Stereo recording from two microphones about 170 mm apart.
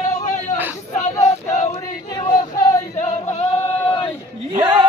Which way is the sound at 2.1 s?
20° left (ahead or behind).